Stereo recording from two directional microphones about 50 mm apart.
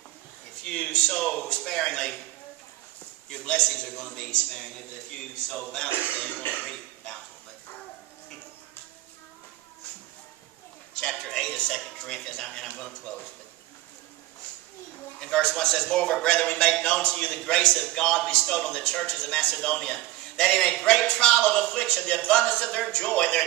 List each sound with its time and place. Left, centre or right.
0.7 s a man's voice: centre
3.3 s a man's voice: centre
5.9 s speech: left
6.1 s cough: left
6.6 s speech: centre
11.0 s a sound: centre
12.7 s a man's voice: centre
15.1 s a man's voice: centre